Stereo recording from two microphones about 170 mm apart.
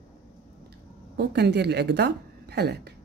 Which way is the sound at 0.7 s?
75° right (ahead or behind).